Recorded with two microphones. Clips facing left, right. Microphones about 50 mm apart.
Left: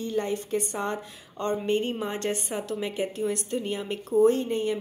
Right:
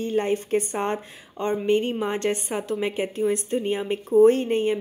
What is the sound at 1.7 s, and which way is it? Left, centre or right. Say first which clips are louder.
A woman's voice: right 4 dB; right.